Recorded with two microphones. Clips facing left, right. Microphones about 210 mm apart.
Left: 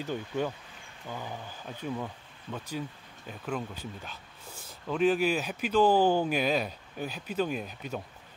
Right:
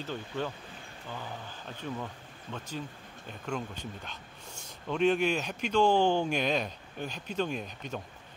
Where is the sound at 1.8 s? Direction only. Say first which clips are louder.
Left 3 dB; 10° left (ahead or behind).